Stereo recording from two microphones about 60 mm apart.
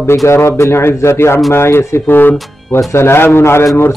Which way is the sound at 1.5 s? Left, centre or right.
Left.